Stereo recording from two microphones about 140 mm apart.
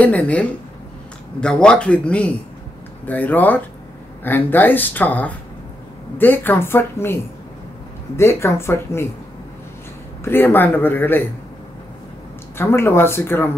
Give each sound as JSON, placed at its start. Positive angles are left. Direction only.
{"t": 0.0, "sound": "speech", "side_deg": 10}
{"t": 8.2, "sound": "speech", "side_deg": 20}
{"t": 10.2, "sound": "speech", "side_deg": 15}
{"t": 12.5, "sound": "speech", "side_deg": 15}